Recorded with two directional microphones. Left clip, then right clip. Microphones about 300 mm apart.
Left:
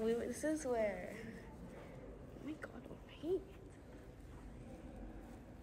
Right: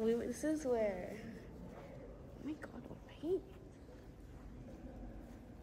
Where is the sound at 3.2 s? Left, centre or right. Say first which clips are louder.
Right 1 dB; right.